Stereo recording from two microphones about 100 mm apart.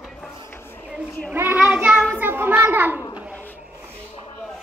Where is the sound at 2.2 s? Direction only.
20° right (ahead or behind).